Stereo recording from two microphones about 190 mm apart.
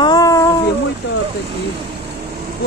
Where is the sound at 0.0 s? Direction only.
20° left (ahead or behind).